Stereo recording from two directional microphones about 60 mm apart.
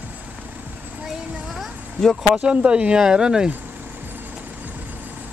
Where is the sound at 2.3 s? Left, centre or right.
Centre.